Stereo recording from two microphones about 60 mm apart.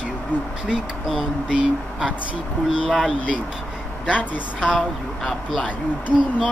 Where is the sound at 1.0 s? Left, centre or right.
Centre.